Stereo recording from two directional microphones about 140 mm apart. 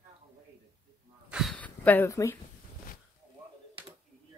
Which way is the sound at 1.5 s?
10° left (ahead or behind).